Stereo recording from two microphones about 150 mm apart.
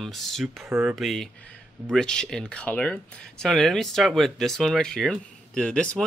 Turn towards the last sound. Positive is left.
turn(degrees=5)  # may be behind; listen again after turning